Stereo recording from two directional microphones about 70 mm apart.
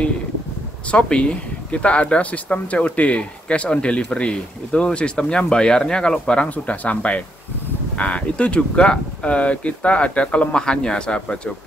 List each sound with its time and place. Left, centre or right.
0.9 s speech: centre